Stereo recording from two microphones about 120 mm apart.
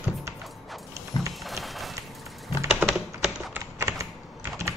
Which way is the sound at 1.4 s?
Centre (ahead or behind).